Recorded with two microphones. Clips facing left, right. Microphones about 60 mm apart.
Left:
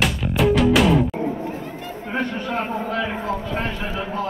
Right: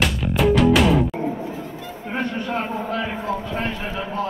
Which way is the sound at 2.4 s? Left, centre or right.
Left.